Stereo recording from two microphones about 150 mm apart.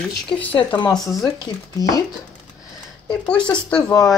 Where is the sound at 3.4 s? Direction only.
5° left (ahead or behind).